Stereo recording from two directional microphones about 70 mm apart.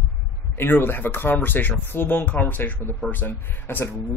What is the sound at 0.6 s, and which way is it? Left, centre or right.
Speech, left.